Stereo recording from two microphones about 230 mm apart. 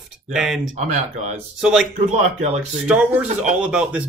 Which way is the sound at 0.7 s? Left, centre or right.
Right.